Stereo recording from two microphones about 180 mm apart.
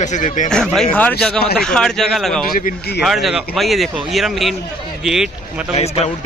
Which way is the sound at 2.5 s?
55° left (ahead or behind).